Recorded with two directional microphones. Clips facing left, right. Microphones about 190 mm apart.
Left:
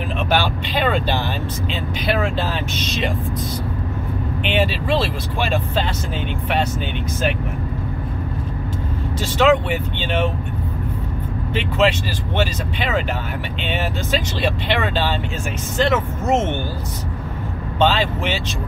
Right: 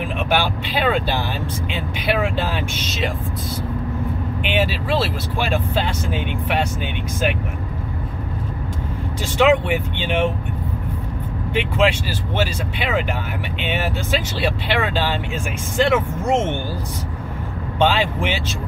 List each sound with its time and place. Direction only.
0.3 s speech: 10° right (ahead or behind)
4.4 s speech: 10° right (ahead or behind)
9.2 s speech: 15° right (ahead or behind)
12.4 s speech: 10° right (ahead or behind)
17.7 s speech: 10° right (ahead or behind)